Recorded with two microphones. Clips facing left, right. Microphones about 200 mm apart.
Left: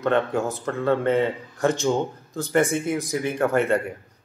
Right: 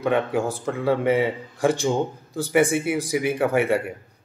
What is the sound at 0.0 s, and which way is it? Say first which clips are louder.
A man's voice: even; 10° right (ahead or behind).